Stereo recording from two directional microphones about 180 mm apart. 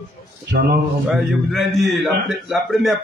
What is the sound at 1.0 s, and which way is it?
A man's voice, centre (ahead or behind).